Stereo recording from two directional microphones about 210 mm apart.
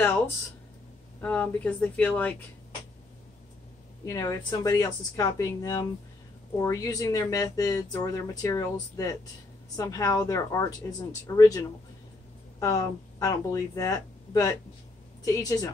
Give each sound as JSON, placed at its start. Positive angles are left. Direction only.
{"t": 1.2, "sound": "speech", "side_deg": 10}
{"t": 4.0, "sound": "a woman's voice", "side_deg": 15}